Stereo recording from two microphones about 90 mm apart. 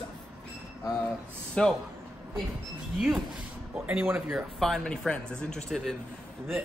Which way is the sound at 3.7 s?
20° right (ahead or behind).